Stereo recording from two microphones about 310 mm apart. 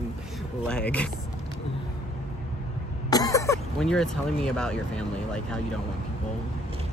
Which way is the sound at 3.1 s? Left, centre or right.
Centre.